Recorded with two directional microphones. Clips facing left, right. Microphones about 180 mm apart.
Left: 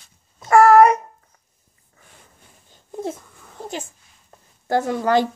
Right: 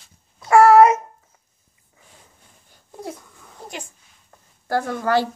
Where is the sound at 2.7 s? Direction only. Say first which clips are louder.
Left 5 dB; 25° left (ahead or behind).